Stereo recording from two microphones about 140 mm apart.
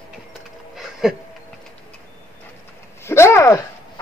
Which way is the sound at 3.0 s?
20° left (ahead or behind).